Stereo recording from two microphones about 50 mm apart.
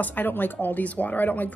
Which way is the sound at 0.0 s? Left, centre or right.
Left.